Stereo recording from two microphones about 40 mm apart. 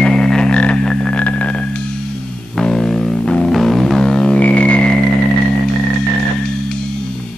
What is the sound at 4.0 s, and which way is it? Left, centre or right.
Music, left.